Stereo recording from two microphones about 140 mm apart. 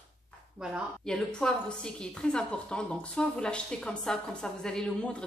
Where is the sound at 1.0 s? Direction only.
5° left (ahead or behind).